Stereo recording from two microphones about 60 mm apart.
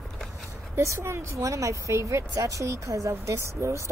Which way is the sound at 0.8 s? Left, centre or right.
Right.